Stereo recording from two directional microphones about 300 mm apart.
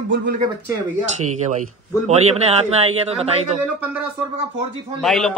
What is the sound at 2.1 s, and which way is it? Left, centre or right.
A man's voice, right.